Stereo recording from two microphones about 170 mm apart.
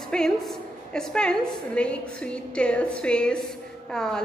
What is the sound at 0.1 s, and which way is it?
A woman's voice, 5° left (ahead or behind).